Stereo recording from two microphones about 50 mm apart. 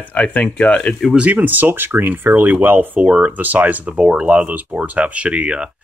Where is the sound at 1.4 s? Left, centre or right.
Right.